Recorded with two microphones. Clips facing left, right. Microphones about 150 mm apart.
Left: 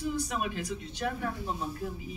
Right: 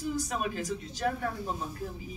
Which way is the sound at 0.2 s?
40° right (ahead or behind).